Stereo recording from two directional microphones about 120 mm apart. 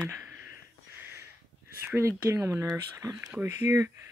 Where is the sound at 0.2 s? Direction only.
10° right (ahead or behind).